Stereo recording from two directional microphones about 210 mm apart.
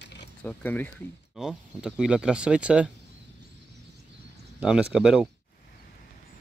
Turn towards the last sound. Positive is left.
turn(degrees=-5)  # may be behind; listen again after turning